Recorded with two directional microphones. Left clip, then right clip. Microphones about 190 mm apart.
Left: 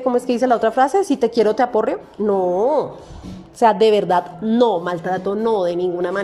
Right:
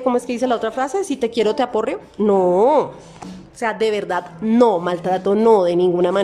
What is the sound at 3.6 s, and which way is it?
A woman's voice, 5° left (ahead or behind).